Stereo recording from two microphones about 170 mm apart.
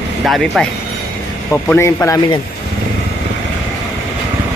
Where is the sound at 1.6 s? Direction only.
15° left (ahead or behind).